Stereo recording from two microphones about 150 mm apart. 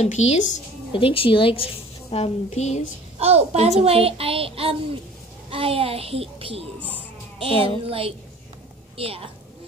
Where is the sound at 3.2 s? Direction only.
45° right (ahead or behind).